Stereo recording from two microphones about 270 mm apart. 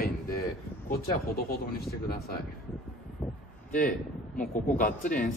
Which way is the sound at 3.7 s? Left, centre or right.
Left.